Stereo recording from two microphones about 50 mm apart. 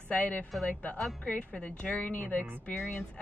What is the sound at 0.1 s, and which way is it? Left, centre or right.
A woman's voice, left.